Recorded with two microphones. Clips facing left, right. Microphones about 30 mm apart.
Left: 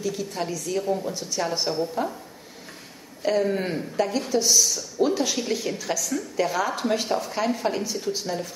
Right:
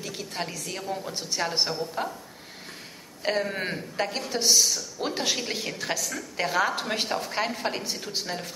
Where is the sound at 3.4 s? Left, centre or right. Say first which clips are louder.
Left 5 dB; right.